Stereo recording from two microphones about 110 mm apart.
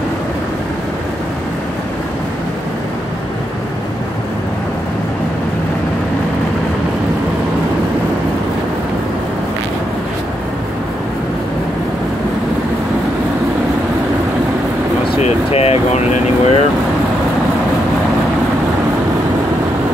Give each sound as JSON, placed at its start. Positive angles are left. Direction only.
{"t": 15.1, "sound": "air conditioning", "side_deg": 65}